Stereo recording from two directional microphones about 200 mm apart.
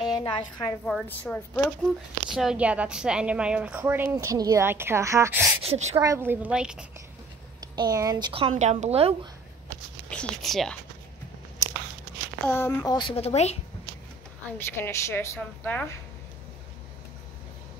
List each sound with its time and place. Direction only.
0.1 s a woman's voice: 20° left (ahead or behind)
0.8 s a woman's voice: 5° left (ahead or behind)
2.3 s a woman's voice: 5° right (ahead or behind)
5.6 s a woman's voice: 30° right (ahead or behind)
5.9 s a woman's voice: 15° right (ahead or behind)
7.6 s speech: 20° right (ahead or behind)
10.0 s speech: 5° left (ahead or behind)
12.4 s a woman's voice: 10° left (ahead or behind); by 13.6 s 35° left (ahead or behind)
14.4 s a woman's voice: 10° left (ahead or behind)